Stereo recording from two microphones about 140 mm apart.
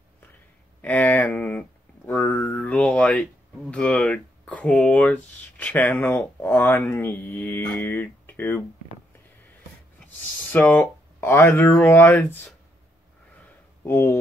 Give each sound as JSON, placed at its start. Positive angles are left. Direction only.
{"t": 0.8, "sound": "speech", "side_deg": 10}
{"t": 2.0, "sound": "a sound", "side_deg": 10}
{"t": 3.7, "sound": "speech", "side_deg": 5}
{"t": 9.9, "sound": "speech", "side_deg": 15}
{"t": 13.8, "sound": "speech", "side_deg": 15}